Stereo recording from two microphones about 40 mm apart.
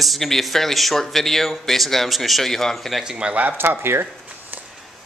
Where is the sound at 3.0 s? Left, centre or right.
Right.